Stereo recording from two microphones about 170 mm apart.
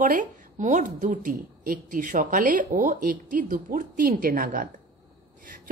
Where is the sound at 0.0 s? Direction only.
50° right (ahead or behind).